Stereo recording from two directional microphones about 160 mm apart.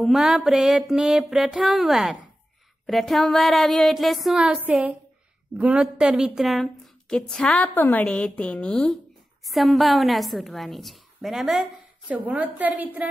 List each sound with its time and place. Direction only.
0.0 s a woman's voice: centre (ahead or behind)